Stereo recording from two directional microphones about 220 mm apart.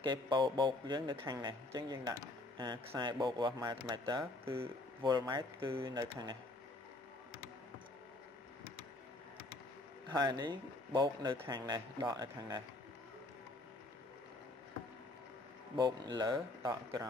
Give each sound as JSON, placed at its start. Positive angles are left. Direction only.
{"t": 0.0, "sound": "a man's voice", "side_deg": -20}
{"t": 10.0, "sound": "a man's voice", "side_deg": -20}
{"t": 15.8, "sound": "speech", "side_deg": -20}